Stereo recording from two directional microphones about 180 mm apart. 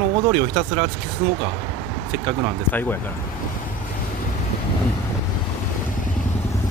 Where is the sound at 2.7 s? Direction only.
10° left (ahead or behind).